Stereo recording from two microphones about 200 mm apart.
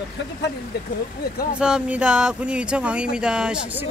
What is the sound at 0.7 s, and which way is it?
Speech, 55° left (ahead or behind).